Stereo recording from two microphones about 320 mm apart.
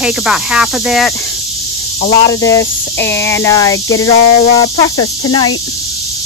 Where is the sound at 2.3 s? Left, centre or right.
Centre.